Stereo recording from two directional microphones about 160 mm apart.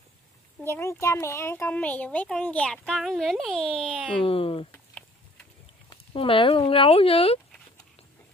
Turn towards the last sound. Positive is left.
turn(degrees=35)  # may be behind; listen again after turning